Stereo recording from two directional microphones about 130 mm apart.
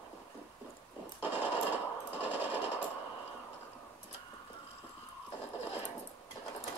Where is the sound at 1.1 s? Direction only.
15° right (ahead or behind).